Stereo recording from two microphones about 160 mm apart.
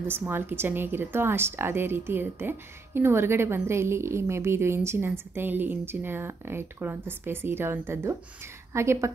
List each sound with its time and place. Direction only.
0.1 s a woman's voice: 15° right (ahead or behind)